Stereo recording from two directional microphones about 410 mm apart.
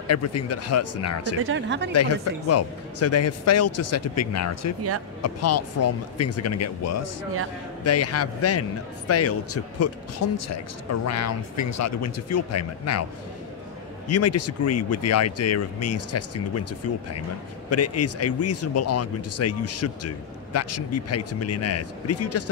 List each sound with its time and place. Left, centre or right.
0.1 s a man's voice: left
1.4 s speech: right
1.9 s a man's voice: left
14.0 s a man's voice: left